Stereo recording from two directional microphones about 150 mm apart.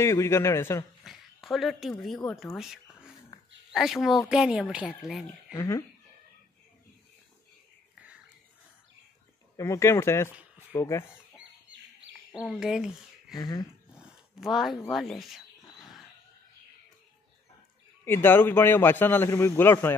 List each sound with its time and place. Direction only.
0.0 s a man's voice: 15° left (ahead or behind)
1.0 s speech: centre (ahead or behind)
3.3 s a sound: 20° left (ahead or behind)
3.7 s speech: centre (ahead or behind)
5.5 s speech: 20° left (ahead or behind)
9.6 s a man's voice: 20° left (ahead or behind)
12.3 s speech: 5° right (ahead or behind)
13.4 s speech: 30° left (ahead or behind)
14.4 s speech: centre (ahead or behind)
18.0 s a man's voice: 15° left (ahead or behind)